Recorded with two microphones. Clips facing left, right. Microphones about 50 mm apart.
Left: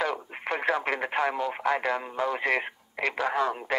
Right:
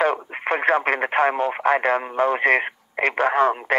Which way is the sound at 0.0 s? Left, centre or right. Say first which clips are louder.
Right 8 dB; right.